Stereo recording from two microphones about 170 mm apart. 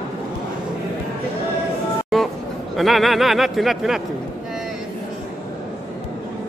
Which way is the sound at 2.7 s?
Centre (ahead or behind).